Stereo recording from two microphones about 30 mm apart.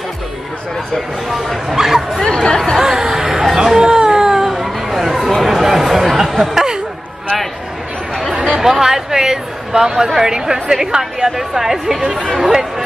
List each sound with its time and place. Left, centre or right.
0.9 s speech: centre
1.8 s speech: centre
2.2 s speech: left
2.8 s music: centre
3.5 s a sound: centre
4.6 s chatter: centre
8.3 s chatter: right
8.5 s speech: centre